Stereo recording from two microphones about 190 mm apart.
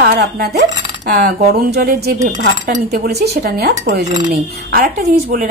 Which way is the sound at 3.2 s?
60° right (ahead or behind).